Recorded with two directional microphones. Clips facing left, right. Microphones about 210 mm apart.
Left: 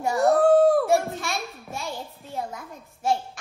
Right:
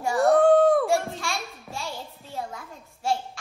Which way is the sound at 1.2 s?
20° left (ahead or behind).